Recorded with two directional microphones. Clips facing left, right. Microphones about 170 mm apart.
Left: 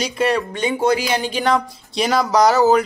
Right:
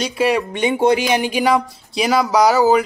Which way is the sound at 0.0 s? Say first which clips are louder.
Right 2 dB; 5° right (ahead or behind).